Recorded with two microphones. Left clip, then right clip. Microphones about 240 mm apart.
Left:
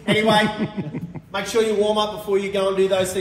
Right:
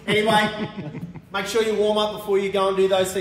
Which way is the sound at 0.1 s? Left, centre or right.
Left.